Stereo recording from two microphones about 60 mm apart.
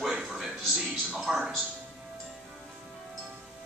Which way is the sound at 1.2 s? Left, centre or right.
Centre.